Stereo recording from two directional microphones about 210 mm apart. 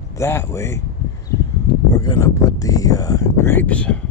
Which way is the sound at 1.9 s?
15° left (ahead or behind).